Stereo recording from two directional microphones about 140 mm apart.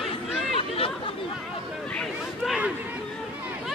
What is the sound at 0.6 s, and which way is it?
Chatter, 40° left (ahead or behind).